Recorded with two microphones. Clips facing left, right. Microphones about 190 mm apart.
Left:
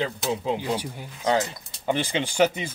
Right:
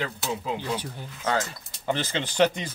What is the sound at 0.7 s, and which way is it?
Speech, 15° left (ahead or behind).